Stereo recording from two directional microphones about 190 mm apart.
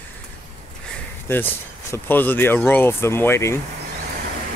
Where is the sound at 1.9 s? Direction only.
10° left (ahead or behind).